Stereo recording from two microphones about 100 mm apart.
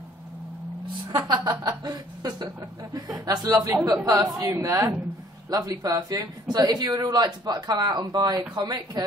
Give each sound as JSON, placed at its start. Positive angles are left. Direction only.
{"t": 1.1, "sound": "speech", "side_deg": -40}